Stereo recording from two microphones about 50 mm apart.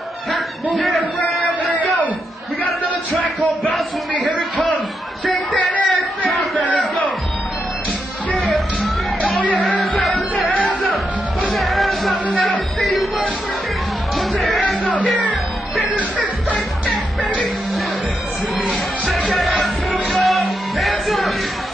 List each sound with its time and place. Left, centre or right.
0.7 s a sound: centre
1.5 s a sound: left
5.7 s a sound: left
9.2 s music: left
9.9 s music: centre
10.5 s music: left
11.5 s music: centre
14.1 s music: centre
19.0 s music: centre